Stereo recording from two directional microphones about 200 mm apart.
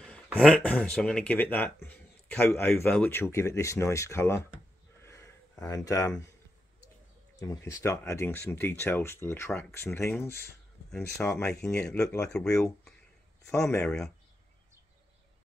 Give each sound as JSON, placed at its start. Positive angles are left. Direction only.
{"t": 0.0, "sound": "speech", "side_deg": 0}
{"t": 5.0, "sound": "a sound", "side_deg": 15}
{"t": 7.3, "sound": "speech", "side_deg": 15}
{"t": 13.5, "sound": "speech", "side_deg": 15}